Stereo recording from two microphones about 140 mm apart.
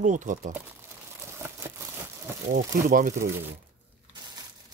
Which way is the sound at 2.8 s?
75° right (ahead or behind).